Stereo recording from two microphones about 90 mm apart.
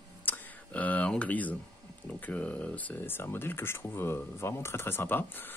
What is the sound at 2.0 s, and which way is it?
Speech, 20° left (ahead or behind).